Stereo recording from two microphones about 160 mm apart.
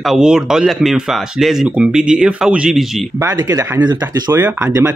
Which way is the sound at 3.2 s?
25° right (ahead or behind).